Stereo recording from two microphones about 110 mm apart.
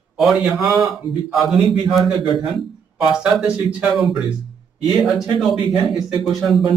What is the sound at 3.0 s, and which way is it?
A man's voice, 5° right (ahead or behind).